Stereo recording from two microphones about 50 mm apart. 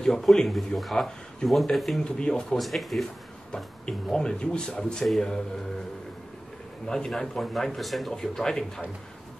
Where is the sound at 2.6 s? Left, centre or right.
Centre.